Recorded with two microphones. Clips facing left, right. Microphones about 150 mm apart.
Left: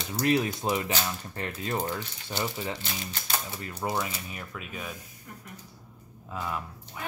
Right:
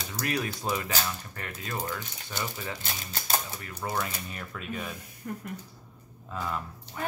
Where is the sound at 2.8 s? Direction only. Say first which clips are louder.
Even; 40° right (ahead or behind).